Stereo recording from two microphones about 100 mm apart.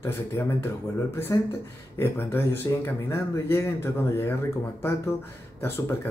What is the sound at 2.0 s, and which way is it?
Speech, 20° left (ahead or behind).